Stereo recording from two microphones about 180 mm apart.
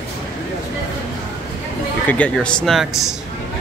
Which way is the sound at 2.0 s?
10° left (ahead or behind).